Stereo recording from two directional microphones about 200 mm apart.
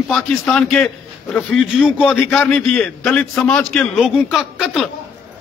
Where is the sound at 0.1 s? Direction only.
5° left (ahead or behind).